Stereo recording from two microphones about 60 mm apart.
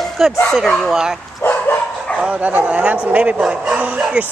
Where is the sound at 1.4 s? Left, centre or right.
Left.